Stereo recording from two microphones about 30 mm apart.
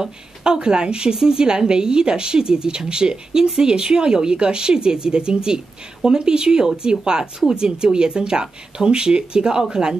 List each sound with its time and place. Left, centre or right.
0.0 s a woman's voice: right